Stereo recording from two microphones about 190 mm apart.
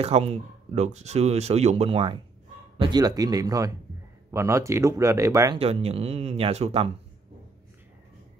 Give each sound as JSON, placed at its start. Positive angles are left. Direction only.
{"t": 0.0, "sound": "speech", "side_deg": -30}
{"t": 5.6, "sound": "speech", "side_deg": -35}